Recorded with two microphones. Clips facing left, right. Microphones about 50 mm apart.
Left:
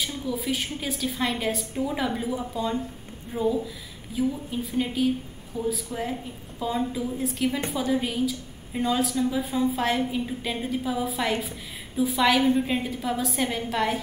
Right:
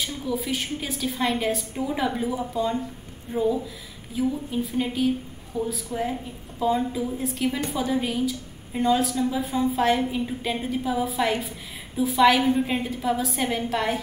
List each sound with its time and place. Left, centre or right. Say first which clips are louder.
0.0 s a woman's voice: right 1 dB; centre